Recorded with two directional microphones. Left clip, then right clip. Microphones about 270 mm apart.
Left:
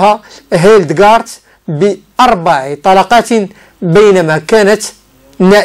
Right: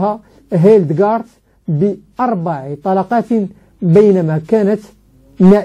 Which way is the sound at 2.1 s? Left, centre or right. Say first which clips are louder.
Left 13 dB; centre.